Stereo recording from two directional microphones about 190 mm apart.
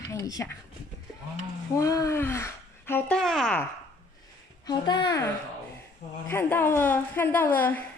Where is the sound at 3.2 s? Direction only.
Centre (ahead or behind).